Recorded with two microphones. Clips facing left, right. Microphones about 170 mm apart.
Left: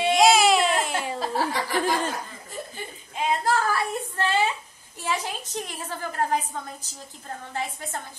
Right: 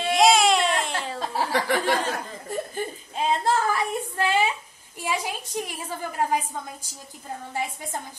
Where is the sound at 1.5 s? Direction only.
65° right (ahead or behind).